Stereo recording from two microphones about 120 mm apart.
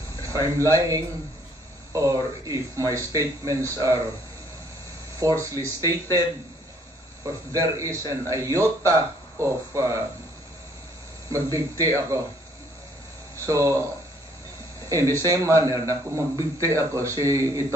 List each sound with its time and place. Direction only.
0.2 s a man's voice: 25° right (ahead or behind)
5.2 s a man's voice: 25° right (ahead or behind)
7.5 s a man's voice: 25° right (ahead or behind)
11.2 s a man's voice: 30° right (ahead or behind)
13.5 s a man's voice: 25° right (ahead or behind)
14.9 s a man's voice: 25° right (ahead or behind)